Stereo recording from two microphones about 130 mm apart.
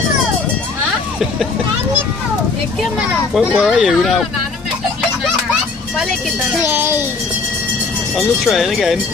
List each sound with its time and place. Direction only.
2.8 s speech: 5° right (ahead or behind)
6.6 s a child's voice: 15° right (ahead or behind)
8.2 s speech: centre (ahead or behind)